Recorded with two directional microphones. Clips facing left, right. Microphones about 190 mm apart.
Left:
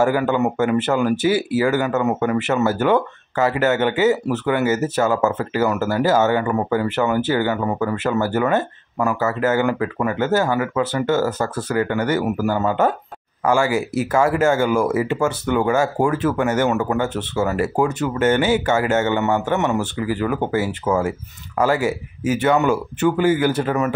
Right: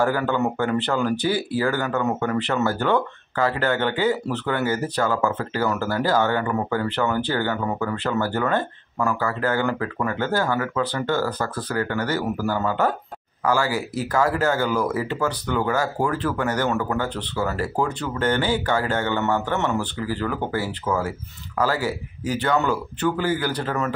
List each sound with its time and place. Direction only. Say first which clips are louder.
0.0 s speech: left 4 dB; 10° left (ahead or behind)
1.9 s speech: left 4 dB; 20° left (ahead or behind)
2.1 s speech: left 4 dB; 10° left (ahead or behind)